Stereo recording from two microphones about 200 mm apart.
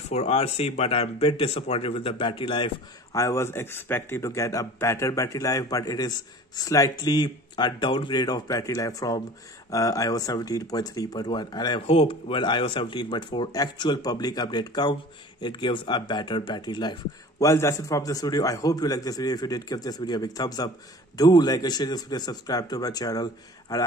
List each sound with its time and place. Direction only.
0.1 s speech: 30° left (ahead or behind)